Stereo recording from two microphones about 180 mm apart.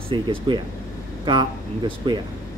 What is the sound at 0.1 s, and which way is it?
Speech, 30° right (ahead or behind).